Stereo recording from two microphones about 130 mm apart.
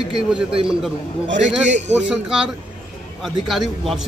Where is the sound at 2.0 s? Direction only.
5° right (ahead or behind).